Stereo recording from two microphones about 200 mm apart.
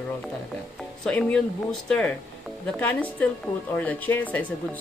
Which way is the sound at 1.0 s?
5° left (ahead or behind).